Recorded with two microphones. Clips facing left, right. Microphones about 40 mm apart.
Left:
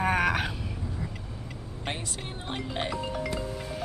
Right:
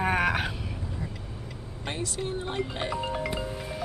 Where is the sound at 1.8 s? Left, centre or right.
Left.